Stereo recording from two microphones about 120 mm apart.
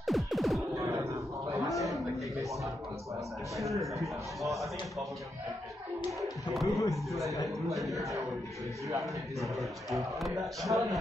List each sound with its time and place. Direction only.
0.0 s music: centre (ahead or behind)
0.7 s a sound: 25° right (ahead or behind)
1.7 s a sound: centre (ahead or behind)
4.4 s speech: centre (ahead or behind)
6.5 s speech: centre (ahead or behind)
9.0 s speech: centre (ahead or behind)